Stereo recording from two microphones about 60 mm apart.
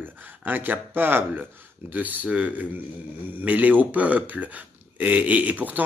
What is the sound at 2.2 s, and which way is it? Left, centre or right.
A man's voice, centre.